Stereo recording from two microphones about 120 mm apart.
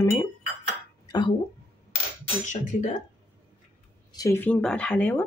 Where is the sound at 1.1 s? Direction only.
40° left (ahead or behind).